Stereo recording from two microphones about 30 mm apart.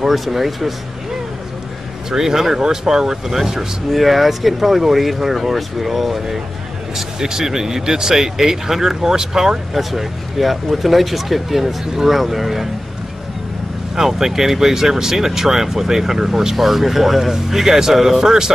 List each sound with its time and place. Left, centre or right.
0.1 s speech: centre
2.0 s speech: centre
7.0 s speech: centre
9.8 s speech: centre
13.9 s speech: centre
16.5 s speech: centre